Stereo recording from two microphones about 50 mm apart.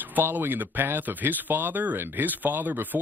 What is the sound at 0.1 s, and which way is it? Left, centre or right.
Speech, right.